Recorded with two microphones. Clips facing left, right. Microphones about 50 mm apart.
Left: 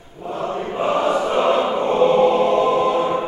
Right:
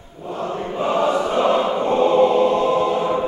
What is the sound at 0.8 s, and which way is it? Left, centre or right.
Choir, centre.